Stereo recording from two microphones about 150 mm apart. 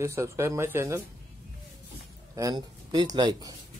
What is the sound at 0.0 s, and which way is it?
Speech, 20° right (ahead or behind).